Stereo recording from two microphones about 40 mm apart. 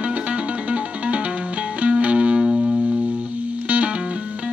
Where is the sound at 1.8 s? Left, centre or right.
Right.